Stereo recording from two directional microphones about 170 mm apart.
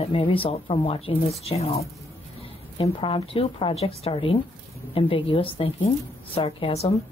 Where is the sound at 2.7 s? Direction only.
30° left (ahead or behind).